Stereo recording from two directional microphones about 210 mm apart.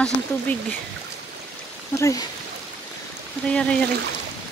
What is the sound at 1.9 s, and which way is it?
Speech, 15° left (ahead or behind).